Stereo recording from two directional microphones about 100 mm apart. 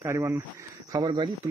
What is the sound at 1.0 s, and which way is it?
Speech, 50° right (ahead or behind).